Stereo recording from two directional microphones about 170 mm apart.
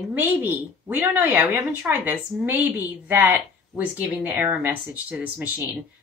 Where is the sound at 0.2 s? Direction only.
10° right (ahead or behind).